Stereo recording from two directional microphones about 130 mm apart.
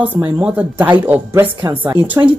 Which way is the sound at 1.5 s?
40° right (ahead or behind).